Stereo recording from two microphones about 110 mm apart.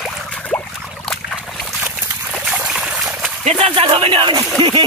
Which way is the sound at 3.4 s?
70° right (ahead or behind).